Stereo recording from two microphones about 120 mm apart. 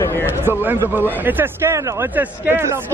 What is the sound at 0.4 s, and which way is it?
A man's voice, 15° right (ahead or behind).